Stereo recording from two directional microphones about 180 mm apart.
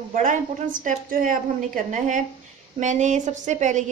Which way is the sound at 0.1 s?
45° right (ahead or behind).